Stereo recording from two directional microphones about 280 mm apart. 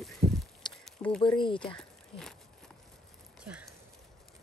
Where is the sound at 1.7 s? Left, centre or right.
Centre.